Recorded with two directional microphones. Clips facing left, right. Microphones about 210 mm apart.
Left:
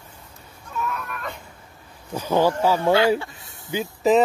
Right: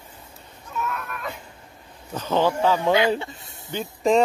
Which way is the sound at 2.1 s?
10° left (ahead or behind).